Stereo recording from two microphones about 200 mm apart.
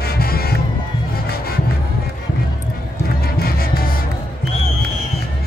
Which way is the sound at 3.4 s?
50° left (ahead or behind).